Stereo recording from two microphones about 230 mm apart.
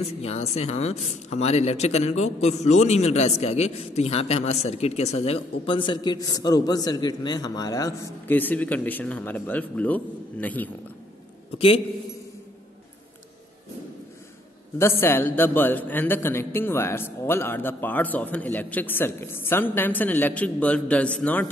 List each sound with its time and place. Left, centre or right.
0.2 s speech: left; by 10.7 s centre
11.5 s speech: left
14.8 s a woman's voice: centre